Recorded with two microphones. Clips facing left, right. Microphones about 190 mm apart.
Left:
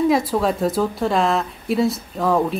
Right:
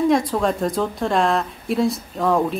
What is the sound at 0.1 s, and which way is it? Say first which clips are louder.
A woman's voice: even; 5° left (ahead or behind).